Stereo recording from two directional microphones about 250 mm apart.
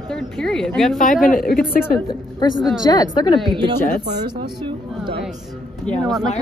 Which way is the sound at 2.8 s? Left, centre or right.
Centre.